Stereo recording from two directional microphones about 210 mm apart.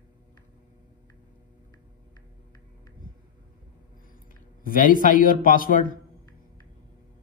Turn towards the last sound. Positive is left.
turn(degrees=40)  # may be behind; listen again after turning